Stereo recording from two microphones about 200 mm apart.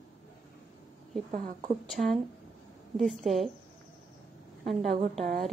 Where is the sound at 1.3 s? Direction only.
40° right (ahead or behind).